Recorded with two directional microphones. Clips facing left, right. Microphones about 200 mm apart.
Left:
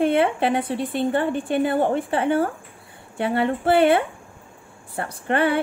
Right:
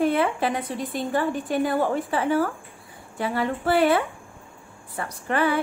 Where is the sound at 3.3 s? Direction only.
30° left (ahead or behind).